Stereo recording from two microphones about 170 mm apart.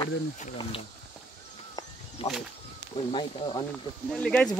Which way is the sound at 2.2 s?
40° left (ahead or behind).